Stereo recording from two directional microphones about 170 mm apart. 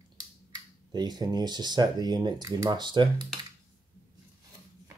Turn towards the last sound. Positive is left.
turn(degrees=-25)  # may be behind; listen again after turning